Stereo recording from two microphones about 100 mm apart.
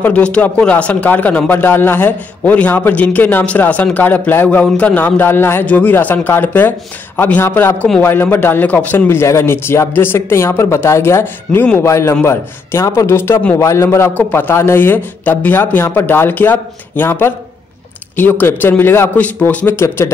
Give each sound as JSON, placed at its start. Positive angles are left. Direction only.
{"t": 0.0, "sound": "a man's voice", "side_deg": 10}